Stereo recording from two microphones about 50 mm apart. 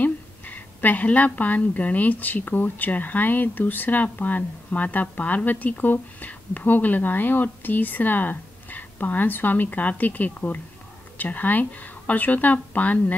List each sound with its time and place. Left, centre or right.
0.0 s a woman's voice: left